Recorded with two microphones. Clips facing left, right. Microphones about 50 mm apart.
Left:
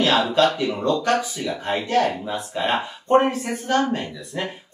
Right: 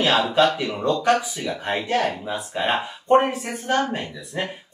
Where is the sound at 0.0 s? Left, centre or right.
Centre.